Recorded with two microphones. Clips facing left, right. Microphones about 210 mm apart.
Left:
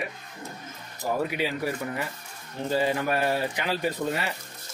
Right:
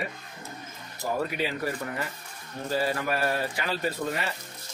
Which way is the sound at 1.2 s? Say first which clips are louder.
Left 1 dB; 15° left (ahead or behind).